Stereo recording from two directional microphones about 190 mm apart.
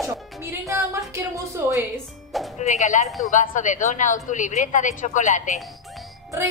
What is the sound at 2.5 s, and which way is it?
A woman's voice, 40° left (ahead or behind).